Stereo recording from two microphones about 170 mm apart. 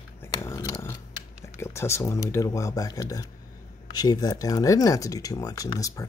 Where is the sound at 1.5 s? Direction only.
15° left (ahead or behind).